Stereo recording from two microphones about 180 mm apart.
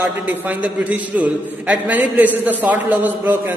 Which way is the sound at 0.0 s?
10° right (ahead or behind).